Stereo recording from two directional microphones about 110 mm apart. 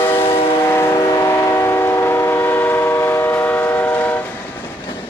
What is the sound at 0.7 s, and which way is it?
Train, 25° left (ahead or behind).